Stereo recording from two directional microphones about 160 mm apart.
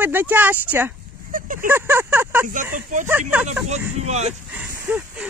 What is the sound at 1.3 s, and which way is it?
Vehicle, 55° right (ahead or behind).